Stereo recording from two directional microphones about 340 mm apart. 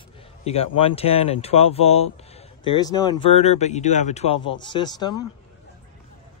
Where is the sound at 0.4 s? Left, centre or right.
Centre.